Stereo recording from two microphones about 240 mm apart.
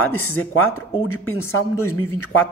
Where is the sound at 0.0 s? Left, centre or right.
Left.